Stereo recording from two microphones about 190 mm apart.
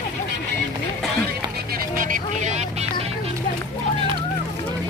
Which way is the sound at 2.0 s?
40° right (ahead or behind).